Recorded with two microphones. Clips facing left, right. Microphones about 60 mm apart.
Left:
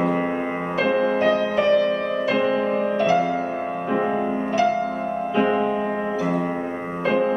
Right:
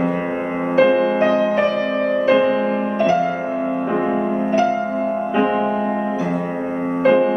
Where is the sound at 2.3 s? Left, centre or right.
Centre.